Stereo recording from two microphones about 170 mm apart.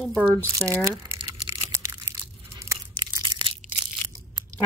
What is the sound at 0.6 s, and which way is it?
Speech, 20° right (ahead or behind).